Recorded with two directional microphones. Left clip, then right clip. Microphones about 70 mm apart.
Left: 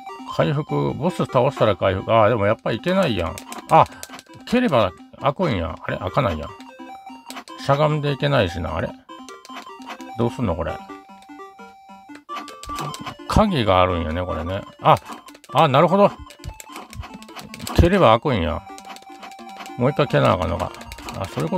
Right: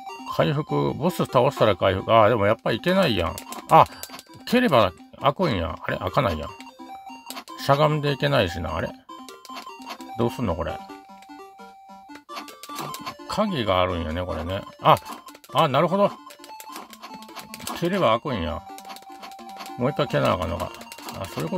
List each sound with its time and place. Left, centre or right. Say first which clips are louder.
0.2 s speech: left 2 dB; centre
7.5 s speech: left 1 dB; centre
8.3 s speech: left 3 dB; centre
10.1 s speech: left 2 dB; centre
12.7 s music: left 5 dB; centre
13.3 s speech: left 6 dB; left
14.2 s speech: left 3 dB; centre
15.5 s speech: left 5 dB; left
18.3 s speech: left 5 dB; left
19.8 s speech: left 5 dB; left